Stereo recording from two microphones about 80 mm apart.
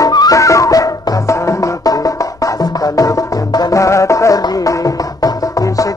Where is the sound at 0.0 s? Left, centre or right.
Left.